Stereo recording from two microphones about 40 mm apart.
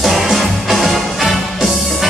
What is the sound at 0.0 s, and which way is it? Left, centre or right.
Music, centre.